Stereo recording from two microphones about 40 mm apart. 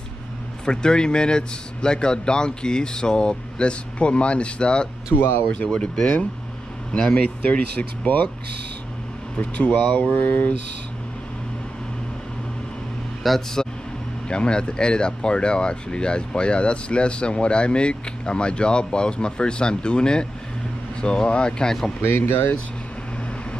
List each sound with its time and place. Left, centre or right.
0.7 s speech: centre
5.1 s speech: left
5.5 s speech: left
7.4 s speech: left
9.4 s speech: left
10.1 s mantra: left
13.2 s speech: centre
14.3 s speech: left
22.2 s speech: left